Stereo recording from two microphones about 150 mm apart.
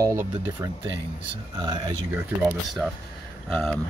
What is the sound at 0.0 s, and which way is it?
Speech, 20° right (ahead or behind).